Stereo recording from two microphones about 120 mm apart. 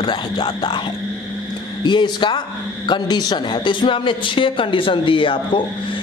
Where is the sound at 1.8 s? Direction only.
40° left (ahead or behind).